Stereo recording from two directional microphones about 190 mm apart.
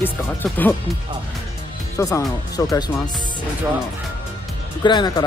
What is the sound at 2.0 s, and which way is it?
Speech, 15° left (ahead or behind).